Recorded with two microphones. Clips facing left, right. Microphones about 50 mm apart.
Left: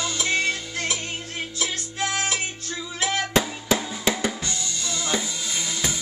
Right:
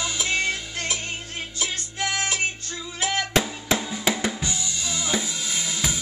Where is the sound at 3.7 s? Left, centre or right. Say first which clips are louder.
Left 1 dB; centre.